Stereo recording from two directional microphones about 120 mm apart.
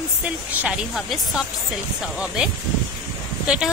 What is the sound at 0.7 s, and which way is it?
Speech, centre (ahead or behind).